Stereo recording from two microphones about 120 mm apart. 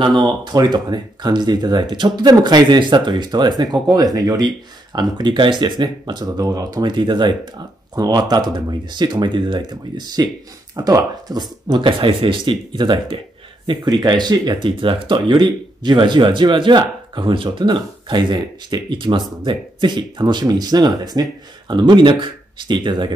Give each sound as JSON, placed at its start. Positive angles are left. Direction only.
{"t": 0.5, "sound": "speech", "side_deg": -35}